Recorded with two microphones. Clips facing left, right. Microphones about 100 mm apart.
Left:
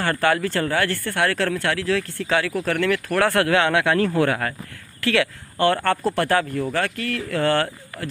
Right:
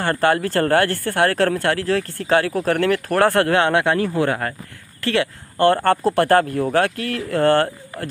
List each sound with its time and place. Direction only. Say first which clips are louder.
0.0 s speech: right 2 dB; 30° right (ahead or behind)
0.4 s speech: right 5 dB; 45° right (ahead or behind)
3.9 s speech: even; 20° right (ahead or behind); by 7.2 s 50° right (ahead or behind)
7.3 s speech: right 5 dB; 35° right (ahead or behind)
7.9 s a man's voice: right 1 dB; 25° right (ahead or behind)